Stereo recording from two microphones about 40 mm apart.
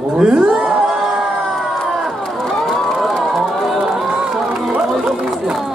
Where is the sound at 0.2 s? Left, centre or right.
Right.